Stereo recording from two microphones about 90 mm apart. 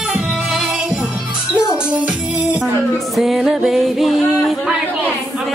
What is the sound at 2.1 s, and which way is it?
Music, 15° right (ahead or behind).